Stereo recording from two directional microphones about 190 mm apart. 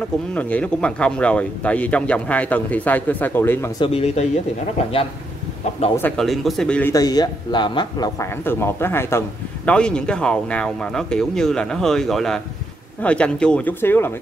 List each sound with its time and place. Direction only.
0.3 s speech: 5° left (ahead or behind)
3.8 s speech: 35° left (ahead or behind)
5.9 s speech: 5° left (ahead or behind)
6.9 s speech: 20° left (ahead or behind)